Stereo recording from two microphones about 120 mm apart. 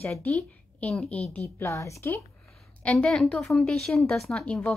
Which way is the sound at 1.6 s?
25° left (ahead or behind).